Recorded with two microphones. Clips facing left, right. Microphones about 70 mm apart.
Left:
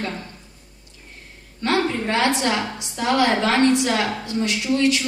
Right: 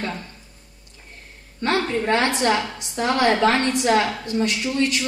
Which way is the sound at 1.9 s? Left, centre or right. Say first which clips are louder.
Even; right.